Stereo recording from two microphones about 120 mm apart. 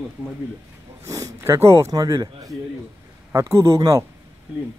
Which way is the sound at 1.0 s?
25° right (ahead or behind).